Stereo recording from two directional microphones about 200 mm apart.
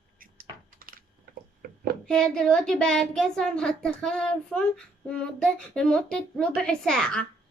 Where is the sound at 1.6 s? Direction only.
45° right (ahead or behind).